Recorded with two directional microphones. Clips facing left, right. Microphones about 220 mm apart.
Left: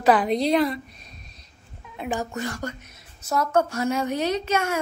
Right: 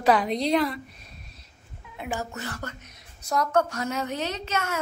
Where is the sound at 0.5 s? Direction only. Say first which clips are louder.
Left 3 dB; 20° left (ahead or behind).